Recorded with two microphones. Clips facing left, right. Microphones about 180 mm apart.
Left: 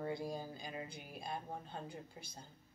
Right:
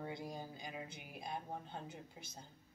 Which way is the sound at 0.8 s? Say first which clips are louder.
Left 2 dB; 20° right (ahead or behind).